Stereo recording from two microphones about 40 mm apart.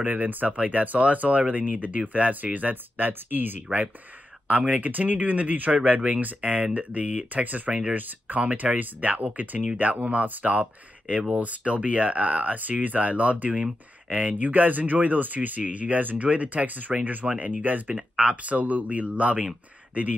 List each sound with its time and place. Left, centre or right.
0.3 s speech: right
4.5 s speech: right